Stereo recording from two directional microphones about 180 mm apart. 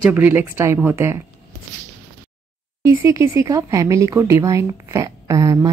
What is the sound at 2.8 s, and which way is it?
Speech, 15° right (ahead or behind).